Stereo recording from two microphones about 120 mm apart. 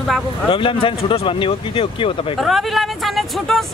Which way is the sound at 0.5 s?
45° left (ahead or behind).